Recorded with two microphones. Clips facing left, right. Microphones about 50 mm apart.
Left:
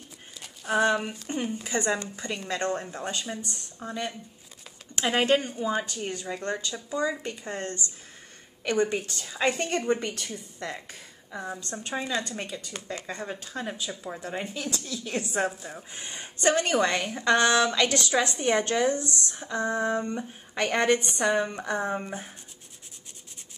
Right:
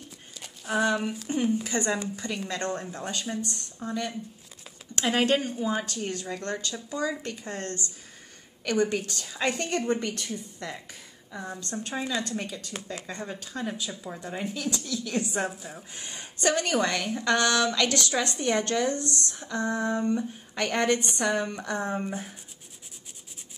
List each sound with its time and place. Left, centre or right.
0.4 s a sound: centre
0.8 s speech: centre
2.5 s a woman's voice: left; by 5.9 s centre
5.9 s a woman's voice: centre
8.6 s a woman's voice: left; by 9.5 s centre
9.5 s a woman's voice: centre
15.4 s speech: centre
15.9 s a woman's voice: left; by 22.3 s centre